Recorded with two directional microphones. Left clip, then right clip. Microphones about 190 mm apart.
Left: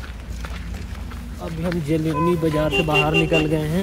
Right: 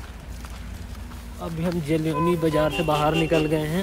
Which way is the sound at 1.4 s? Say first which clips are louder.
Left 2 dB; 15° right (ahead or behind).